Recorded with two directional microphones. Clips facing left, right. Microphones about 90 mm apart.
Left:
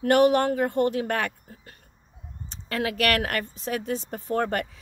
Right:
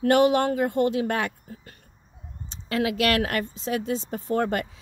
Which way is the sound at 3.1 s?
25° right (ahead or behind).